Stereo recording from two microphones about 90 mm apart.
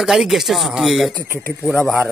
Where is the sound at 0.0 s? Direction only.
5° right (ahead or behind).